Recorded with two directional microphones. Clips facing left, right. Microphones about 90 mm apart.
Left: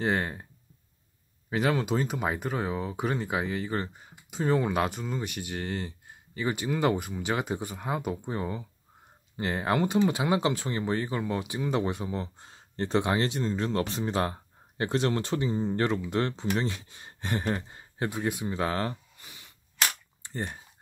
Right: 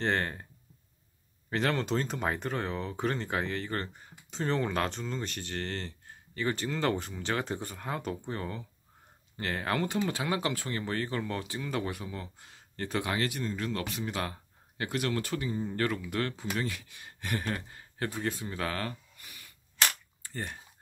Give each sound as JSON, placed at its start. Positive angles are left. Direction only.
{"t": 0.0, "sound": "speech", "side_deg": 10}
{"t": 1.5, "sound": "speech", "side_deg": 5}
{"t": 20.2, "sound": "a sound", "side_deg": 20}